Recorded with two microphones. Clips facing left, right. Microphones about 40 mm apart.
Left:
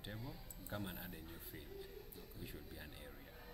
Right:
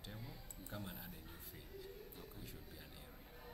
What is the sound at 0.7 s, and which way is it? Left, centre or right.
Speech, centre.